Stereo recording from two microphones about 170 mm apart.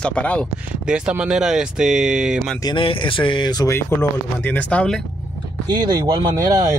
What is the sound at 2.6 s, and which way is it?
Speech, 30° left (ahead or behind).